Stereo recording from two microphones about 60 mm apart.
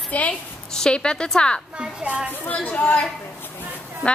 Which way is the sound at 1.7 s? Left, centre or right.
Centre.